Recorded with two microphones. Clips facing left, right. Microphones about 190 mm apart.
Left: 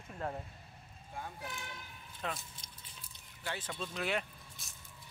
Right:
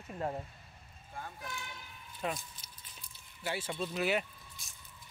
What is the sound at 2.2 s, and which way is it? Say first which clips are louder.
Speech: right 4 dB; 10° right (ahead or behind).